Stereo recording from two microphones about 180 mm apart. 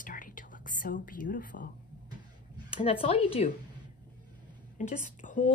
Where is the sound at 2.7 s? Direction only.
30° left (ahead or behind).